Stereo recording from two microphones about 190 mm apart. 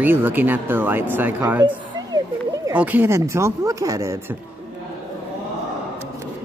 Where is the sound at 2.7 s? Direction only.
10° right (ahead or behind).